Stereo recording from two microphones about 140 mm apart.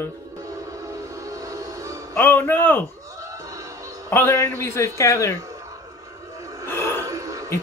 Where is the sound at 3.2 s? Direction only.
25° right (ahead or behind).